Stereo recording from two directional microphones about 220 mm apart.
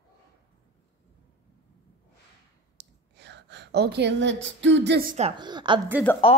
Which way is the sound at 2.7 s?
50° right (ahead or behind).